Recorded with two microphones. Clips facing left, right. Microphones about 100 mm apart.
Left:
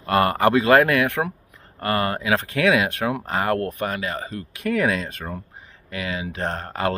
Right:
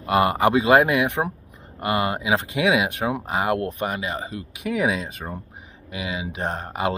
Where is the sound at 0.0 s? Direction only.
15° right (ahead or behind).